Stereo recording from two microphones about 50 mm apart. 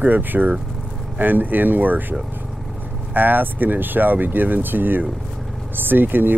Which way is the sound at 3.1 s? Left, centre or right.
Right.